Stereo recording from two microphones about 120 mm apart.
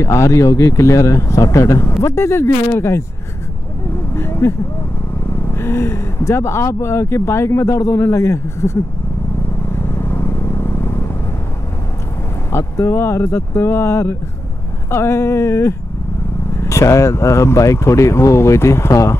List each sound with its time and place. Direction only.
0.0 s speech: 25° left (ahead or behind)
4.1 s vehicle: 20° left (ahead or behind)
5.5 s speech: 20° left (ahead or behind)
9.8 s vehicle: 20° left (ahead or behind)
12.5 s speech: 25° left (ahead or behind)